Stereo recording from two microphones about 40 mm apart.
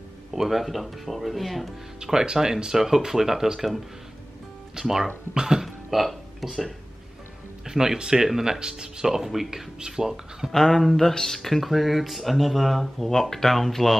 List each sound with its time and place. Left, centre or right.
0.3 s speech: centre
2.0 s speech: centre
5.9 s speech: centre
10.5 s speech: centre